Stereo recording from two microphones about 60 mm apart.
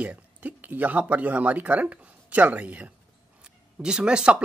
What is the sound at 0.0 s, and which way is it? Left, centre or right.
Speech, right.